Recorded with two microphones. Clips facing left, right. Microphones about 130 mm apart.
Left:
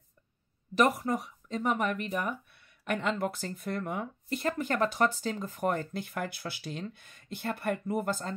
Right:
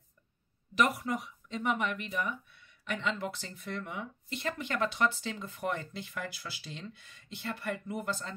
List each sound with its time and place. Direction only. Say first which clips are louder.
0.7 s speech: left 3 dB; 35° left (ahead or behind)